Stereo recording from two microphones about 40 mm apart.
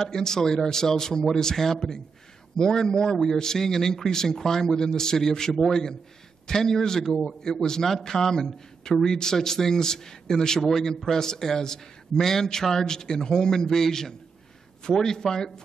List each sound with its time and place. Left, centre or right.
0.0 s a man's voice: centre